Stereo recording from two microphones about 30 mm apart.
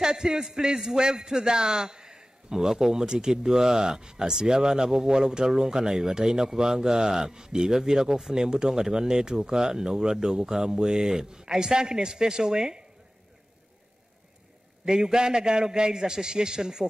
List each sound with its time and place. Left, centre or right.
0.0 s speech: right
14.9 s speech: right